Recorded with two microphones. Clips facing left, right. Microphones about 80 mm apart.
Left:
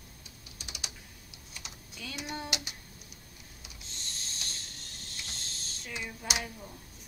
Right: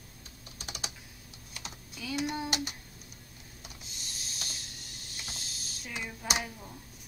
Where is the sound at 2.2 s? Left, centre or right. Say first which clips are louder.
Right 2 dB; centre.